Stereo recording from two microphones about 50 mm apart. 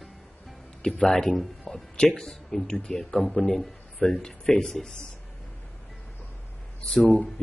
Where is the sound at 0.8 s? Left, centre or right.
Centre.